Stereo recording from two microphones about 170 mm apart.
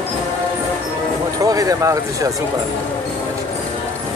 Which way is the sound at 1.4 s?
20° right (ahead or behind).